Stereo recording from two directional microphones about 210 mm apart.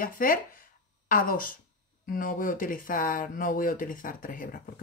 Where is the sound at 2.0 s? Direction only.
40° left (ahead or behind).